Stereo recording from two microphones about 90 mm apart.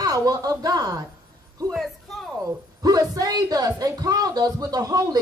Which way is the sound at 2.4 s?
45° right (ahead or behind).